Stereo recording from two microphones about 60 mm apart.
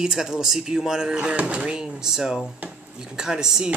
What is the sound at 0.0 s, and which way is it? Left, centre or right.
Speech, centre.